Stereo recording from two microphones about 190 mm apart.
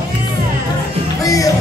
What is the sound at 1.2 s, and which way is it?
Music, 15° left (ahead or behind).